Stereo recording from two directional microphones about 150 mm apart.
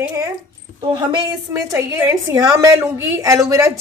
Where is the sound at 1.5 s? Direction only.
20° right (ahead or behind).